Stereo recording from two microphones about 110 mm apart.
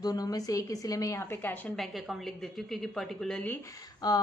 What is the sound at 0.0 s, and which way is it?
A woman's voice, 35° left (ahead or behind).